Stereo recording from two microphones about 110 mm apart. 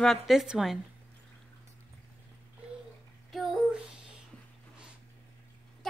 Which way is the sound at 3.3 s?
Centre (ahead or behind).